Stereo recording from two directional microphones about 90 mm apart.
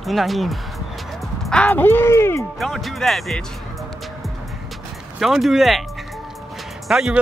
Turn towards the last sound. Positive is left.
turn(degrees=-5)  # may be behind; listen again after turning